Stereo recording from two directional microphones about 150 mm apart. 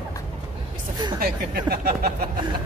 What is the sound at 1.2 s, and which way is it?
Speech, 90° right.